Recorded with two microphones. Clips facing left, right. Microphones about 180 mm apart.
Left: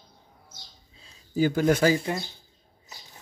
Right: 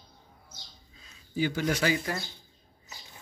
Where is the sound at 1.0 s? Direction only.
40° left (ahead or behind).